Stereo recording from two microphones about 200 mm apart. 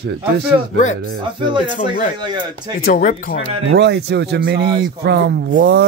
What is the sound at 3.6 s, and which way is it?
Speech, 60° right (ahead or behind).